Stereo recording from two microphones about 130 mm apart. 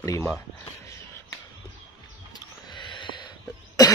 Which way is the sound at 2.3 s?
35° left (ahead or behind).